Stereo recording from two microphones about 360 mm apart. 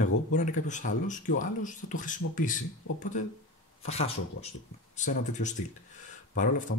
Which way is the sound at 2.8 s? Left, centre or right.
Left.